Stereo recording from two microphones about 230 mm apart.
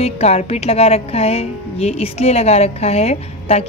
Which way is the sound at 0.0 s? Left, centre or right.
Left.